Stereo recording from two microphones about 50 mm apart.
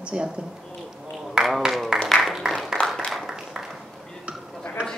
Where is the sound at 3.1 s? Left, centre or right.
Centre.